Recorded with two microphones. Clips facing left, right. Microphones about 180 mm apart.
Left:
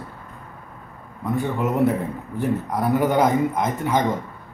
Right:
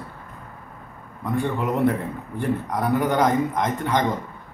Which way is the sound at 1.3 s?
5° left (ahead or behind).